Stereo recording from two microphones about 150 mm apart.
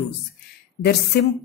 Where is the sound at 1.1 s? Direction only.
90° left.